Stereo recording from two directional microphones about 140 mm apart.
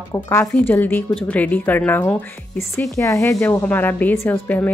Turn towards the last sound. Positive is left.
turn(degrees=10)  # may be behind; listen again after turning